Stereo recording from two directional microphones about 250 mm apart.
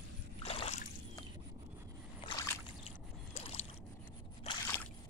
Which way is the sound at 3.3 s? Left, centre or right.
Left.